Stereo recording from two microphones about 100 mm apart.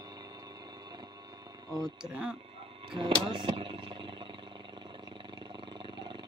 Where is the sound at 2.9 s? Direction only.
55° right (ahead or behind).